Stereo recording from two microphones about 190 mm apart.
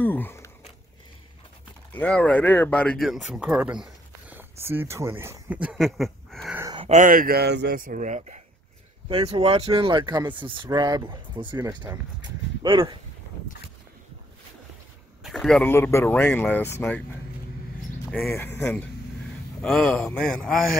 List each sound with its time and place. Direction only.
0.0 s a sound: 10° left (ahead or behind)
1.9 s speech: 5° left (ahead or behind)
6.7 s a sound: 25° right (ahead or behind)
7.0 s a man's voice: 45° right (ahead or behind); by 13.0 s 25° right (ahead or behind)
15.2 s speech: centre (ahead or behind)
18.1 s a man's voice: 10° left (ahead or behind)